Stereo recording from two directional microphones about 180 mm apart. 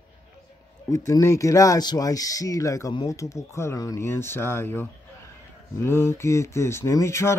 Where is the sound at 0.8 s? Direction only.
20° left (ahead or behind).